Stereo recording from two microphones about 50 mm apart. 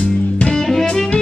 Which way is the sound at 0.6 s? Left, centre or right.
Centre.